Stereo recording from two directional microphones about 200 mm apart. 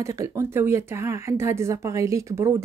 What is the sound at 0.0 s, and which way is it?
Speech, 15° right (ahead or behind).